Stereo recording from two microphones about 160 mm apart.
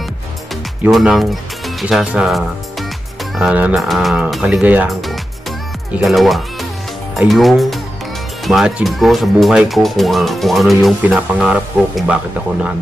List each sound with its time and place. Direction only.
0.8 s speech: 5° right (ahead or behind)